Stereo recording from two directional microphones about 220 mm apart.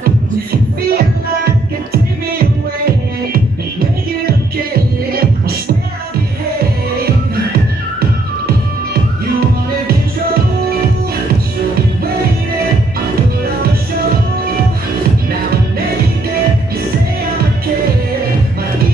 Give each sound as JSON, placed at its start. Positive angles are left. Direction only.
{"t": 0.9, "sound": "music", "side_deg": -45}